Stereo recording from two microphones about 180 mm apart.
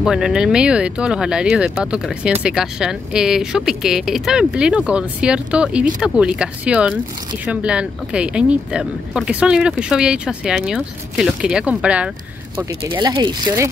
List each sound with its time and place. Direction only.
0.0 s speech: 5° right (ahead or behind)
12.8 s speech: 25° right (ahead or behind)